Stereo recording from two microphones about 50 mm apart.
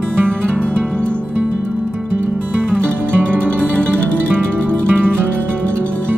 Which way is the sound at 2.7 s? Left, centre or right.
Left.